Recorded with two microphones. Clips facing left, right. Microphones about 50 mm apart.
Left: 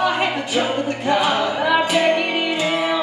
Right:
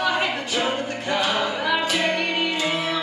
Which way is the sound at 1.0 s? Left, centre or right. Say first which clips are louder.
Left 5 dB; centre.